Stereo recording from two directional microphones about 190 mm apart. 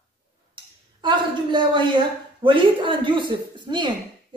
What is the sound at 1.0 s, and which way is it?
A woman's voice, 25° right (ahead or behind).